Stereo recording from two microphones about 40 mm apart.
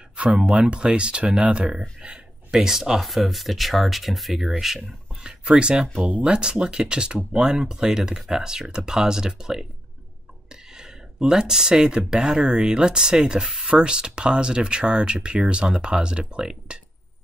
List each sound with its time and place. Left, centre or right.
0.1 s a sound: right
0.6 s speech: right
1.7 s speech: centre
5.2 s speech: right
6.0 s speech: right
6.3 s speech: right